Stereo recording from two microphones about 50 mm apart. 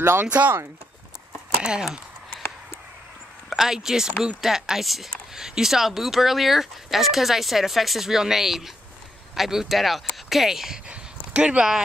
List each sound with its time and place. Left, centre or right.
0.0 s speech: right
1.6 s speech: centre
3.4 s speech: centre